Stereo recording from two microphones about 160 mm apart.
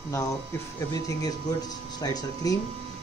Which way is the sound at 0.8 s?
20° left (ahead or behind).